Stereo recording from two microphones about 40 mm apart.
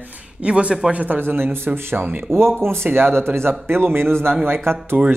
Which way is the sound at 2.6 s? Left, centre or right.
Right.